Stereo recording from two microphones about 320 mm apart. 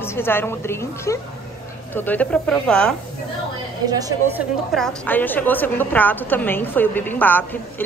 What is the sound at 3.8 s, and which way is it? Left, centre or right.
Speech, centre.